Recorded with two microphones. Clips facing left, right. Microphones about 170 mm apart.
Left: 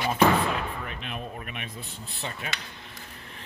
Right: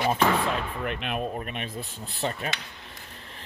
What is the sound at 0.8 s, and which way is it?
Speech, 70° right (ahead or behind).